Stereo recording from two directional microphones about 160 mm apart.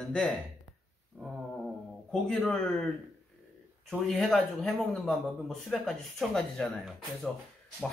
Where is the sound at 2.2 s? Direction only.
5° left (ahead or behind).